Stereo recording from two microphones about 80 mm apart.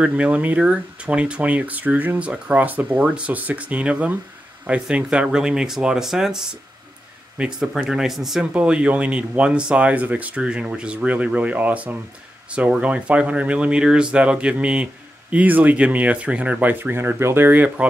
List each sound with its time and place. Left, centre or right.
0.0 s speech: centre
8.5 s speech: centre